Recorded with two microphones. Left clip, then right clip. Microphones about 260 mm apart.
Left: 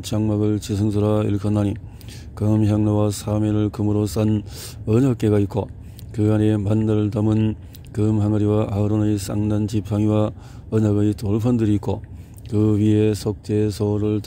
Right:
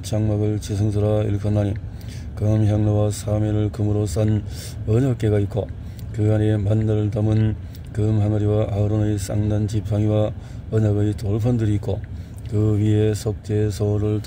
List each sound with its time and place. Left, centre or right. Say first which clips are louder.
0.0 s speech: left 2 dB; left